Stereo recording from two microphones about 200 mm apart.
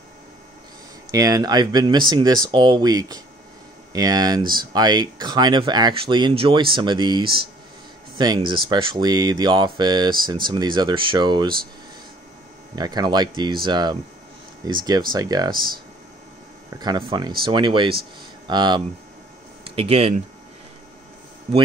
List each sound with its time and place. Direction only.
1.1 s speech: 20° right (ahead or behind)
12.7 s speech: 20° right (ahead or behind)
16.7 s speech: 20° right (ahead or behind)